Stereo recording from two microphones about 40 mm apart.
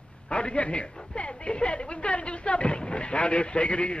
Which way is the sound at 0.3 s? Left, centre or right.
Left.